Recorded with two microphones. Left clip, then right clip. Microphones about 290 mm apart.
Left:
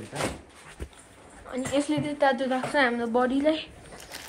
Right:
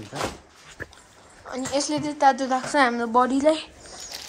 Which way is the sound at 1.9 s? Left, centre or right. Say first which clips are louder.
Right 6 dB; centre.